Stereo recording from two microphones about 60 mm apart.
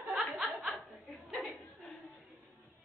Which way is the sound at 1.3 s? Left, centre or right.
Centre.